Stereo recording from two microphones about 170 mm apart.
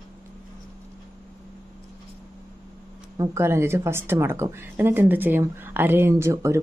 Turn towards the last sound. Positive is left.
turn(degrees=-15)  # may be behind; listen again after turning